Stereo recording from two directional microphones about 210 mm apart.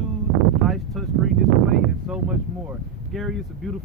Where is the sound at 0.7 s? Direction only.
Centre (ahead or behind).